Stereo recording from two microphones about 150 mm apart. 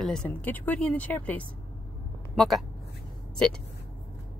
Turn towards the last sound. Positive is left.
turn(degrees=5)  # may be behind; listen again after turning